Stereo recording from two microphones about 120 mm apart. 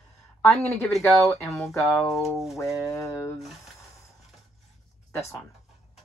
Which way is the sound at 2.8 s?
25° left (ahead or behind).